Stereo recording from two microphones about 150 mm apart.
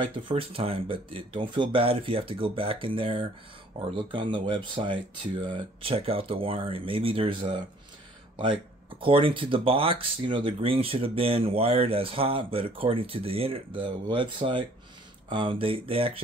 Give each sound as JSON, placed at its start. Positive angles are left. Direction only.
{"t": 0.0, "sound": "speech", "side_deg": -35}
{"t": 9.0, "sound": "speech", "side_deg": -35}